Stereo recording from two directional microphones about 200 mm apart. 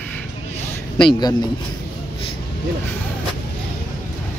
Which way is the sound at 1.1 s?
20° left (ahead or behind).